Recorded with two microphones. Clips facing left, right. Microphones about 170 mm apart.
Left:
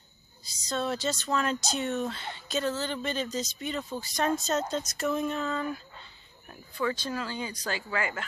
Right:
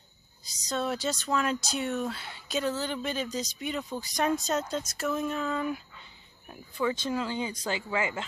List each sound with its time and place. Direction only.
0.7 s speech: 10° right (ahead or behind)